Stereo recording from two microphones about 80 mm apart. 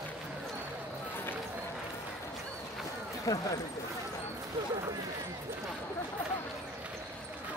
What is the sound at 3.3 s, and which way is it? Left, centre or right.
Speech, left.